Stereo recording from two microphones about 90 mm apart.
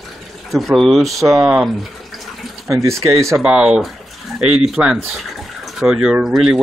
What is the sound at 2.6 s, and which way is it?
Speech, 35° right (ahead or behind).